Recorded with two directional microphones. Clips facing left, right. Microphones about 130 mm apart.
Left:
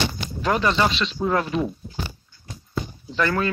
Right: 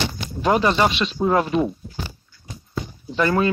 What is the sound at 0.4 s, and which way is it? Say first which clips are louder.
Speech: right 3 dB; 20° right (ahead or behind).